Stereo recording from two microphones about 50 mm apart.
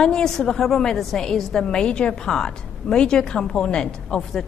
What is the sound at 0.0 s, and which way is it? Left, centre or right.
A woman's voice, centre.